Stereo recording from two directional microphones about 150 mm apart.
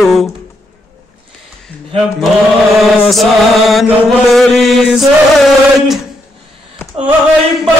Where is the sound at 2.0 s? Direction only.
Centre (ahead or behind).